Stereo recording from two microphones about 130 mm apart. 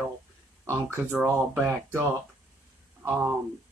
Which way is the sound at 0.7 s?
20° right (ahead or behind).